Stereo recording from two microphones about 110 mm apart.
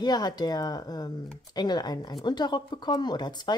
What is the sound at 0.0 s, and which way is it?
Speech, 40° left (ahead or behind).